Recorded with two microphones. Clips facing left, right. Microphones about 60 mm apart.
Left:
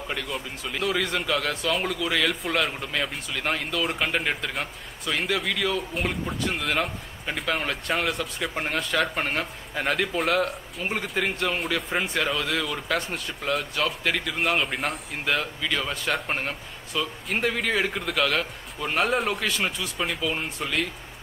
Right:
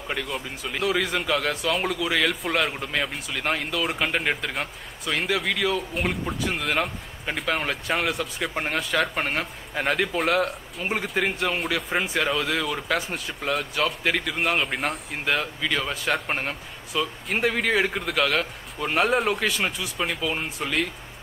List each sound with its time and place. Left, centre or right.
0.1 s a man's voice: centre